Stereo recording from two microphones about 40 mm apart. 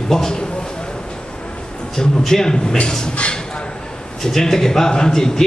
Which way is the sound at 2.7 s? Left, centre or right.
Left.